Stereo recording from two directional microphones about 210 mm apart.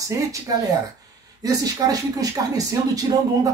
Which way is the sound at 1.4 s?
15° right (ahead or behind).